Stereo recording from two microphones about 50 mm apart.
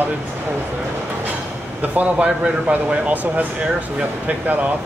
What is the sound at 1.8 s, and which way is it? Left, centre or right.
Speech, right.